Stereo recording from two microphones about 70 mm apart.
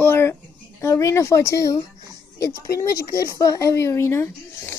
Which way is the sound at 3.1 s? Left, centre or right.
Left.